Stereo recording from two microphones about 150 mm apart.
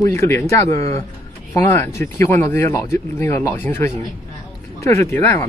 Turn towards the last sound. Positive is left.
turn(degrees=15)  # may be behind; listen again after turning